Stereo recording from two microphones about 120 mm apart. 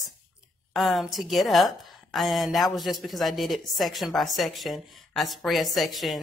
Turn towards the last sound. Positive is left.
turn(degrees=0)  # may be behind; listen again after turning